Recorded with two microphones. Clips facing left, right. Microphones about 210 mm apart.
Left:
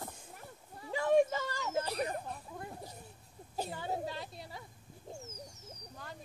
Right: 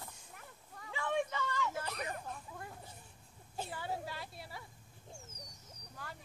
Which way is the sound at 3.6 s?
20° left (ahead or behind).